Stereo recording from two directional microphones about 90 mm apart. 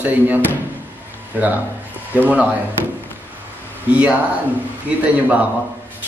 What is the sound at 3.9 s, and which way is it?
Speech, 15° right (ahead or behind).